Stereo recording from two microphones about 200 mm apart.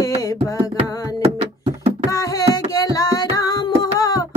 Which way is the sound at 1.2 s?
25° right (ahead or behind).